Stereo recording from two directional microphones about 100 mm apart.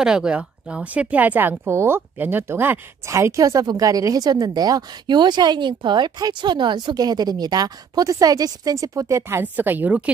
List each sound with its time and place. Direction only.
0.0 s speech: 10° right (ahead or behind); by 9.4 s 30° right (ahead or behind)
9.4 s a woman's voice: 20° right (ahead or behind)